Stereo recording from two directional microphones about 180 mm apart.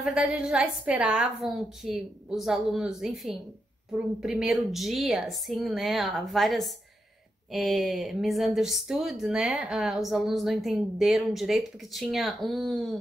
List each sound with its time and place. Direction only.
0.0 s speech: 5° right (ahead or behind)